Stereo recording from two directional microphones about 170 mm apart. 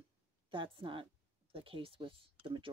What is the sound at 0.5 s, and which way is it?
Speech, 30° right (ahead or behind).